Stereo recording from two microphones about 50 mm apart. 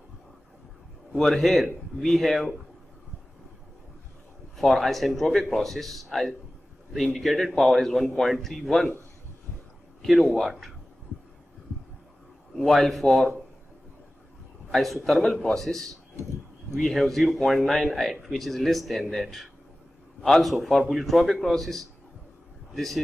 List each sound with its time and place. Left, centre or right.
1.1 s speech: centre
4.6 s speech: centre
10.0 s speech: centre
12.5 s a man's voice: centre
14.7 s a man's voice: centre